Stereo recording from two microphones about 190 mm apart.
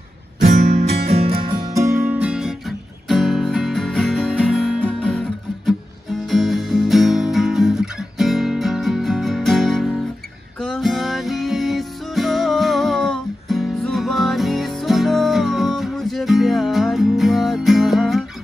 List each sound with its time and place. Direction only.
0.5 s music: 40° right (ahead or behind); by 5.8 s centre (ahead or behind)
6.2 s guitar: centre (ahead or behind)
10.6 s music: centre (ahead or behind)